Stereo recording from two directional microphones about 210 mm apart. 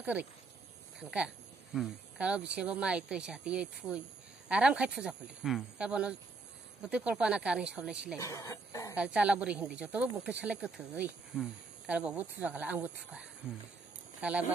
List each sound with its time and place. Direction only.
0.0 s speech: 5° right (ahead or behind)
8.2 s speech: 15° left (ahead or behind)
8.9 s speech: 5° right (ahead or behind)